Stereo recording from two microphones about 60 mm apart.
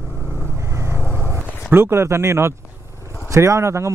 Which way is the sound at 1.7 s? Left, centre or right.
Right.